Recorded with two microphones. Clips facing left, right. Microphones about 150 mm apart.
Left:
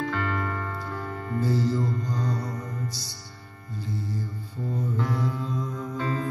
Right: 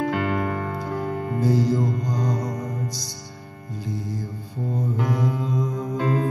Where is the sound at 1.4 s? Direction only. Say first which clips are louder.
Right 4 dB; 15° right (ahead or behind).